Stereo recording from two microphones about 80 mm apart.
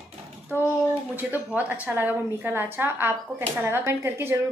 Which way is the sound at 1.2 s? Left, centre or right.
Centre.